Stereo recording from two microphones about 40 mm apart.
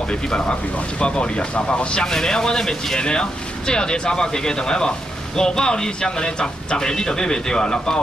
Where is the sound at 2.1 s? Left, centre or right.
Centre.